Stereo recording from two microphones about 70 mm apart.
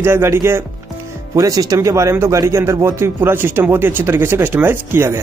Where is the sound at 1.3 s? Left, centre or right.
Right.